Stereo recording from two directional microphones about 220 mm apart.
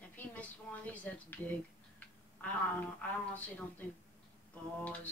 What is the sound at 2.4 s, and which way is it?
A woman's voice, 5° left (ahead or behind).